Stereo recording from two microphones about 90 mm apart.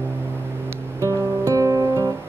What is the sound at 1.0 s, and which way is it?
Guitar, 35° right (ahead or behind).